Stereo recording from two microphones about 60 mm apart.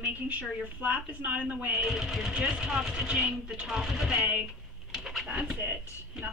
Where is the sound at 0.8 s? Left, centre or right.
Right.